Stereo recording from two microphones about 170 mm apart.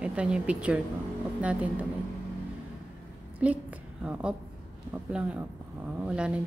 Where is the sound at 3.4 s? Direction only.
10° right (ahead or behind).